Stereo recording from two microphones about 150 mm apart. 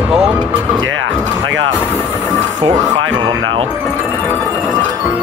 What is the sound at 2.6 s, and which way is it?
Speech, 30° right (ahead or behind).